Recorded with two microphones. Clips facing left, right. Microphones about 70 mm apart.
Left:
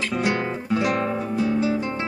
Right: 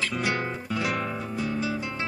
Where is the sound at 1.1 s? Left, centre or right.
Left.